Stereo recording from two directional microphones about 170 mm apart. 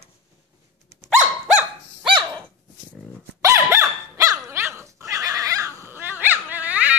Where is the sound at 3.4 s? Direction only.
15° right (ahead or behind).